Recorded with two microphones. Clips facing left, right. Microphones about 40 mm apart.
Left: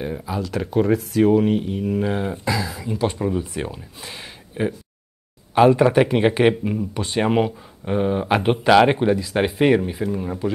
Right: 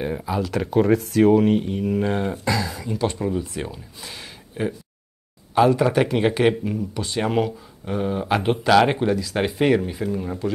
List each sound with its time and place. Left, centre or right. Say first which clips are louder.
0.0 s speech: right 2 dB; centre